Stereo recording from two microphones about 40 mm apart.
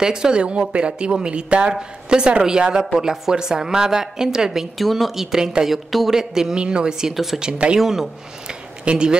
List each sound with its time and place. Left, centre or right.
0.0 s a woman's voice: centre
4.7 s speech: centre
5.1 s a woman's voice: centre
6.1 s a woman's voice: centre
7.8 s a woman's voice: centre
8.5 s a sound: right